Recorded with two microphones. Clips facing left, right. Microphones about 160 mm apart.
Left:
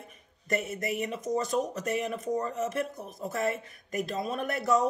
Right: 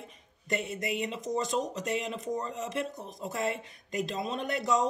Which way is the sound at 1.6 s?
50° left (ahead or behind).